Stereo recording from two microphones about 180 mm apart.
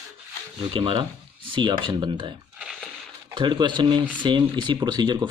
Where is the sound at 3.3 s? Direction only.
25° right (ahead or behind).